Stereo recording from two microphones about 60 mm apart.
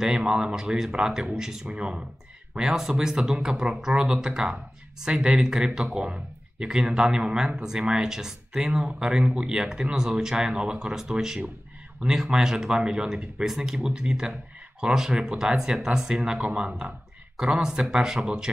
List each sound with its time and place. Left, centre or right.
0.0 s speech: centre